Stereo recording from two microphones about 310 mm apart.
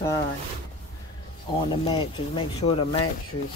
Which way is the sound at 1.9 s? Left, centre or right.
Centre.